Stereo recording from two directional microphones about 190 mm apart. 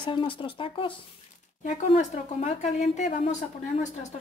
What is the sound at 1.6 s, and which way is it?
A woman's voice, 40° left (ahead or behind).